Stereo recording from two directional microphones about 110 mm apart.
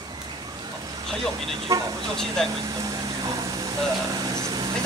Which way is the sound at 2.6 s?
35° right (ahead or behind).